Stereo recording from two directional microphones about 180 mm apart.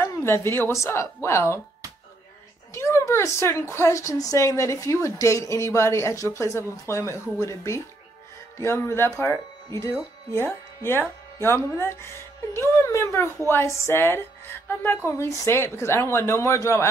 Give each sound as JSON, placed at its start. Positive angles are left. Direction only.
{"t": 0.0, "sound": "a woman's voice", "side_deg": 15}
{"t": 2.7, "sound": "a woman's voice", "side_deg": 15}